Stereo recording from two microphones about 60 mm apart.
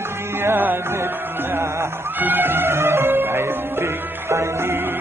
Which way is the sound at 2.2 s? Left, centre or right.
Right.